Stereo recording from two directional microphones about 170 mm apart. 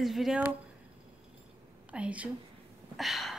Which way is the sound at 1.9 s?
10° right (ahead or behind).